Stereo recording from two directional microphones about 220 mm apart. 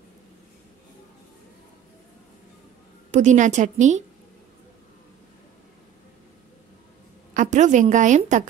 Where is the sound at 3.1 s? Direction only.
35° right (ahead or behind).